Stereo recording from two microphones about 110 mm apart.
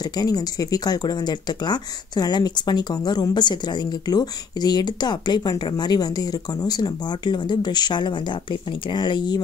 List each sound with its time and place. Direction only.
0.1 s speech: 35° left (ahead or behind)